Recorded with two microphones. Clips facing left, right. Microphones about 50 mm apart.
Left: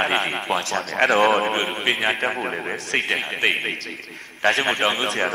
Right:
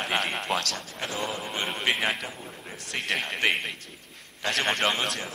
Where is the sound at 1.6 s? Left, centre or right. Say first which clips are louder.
Left 5 dB; left.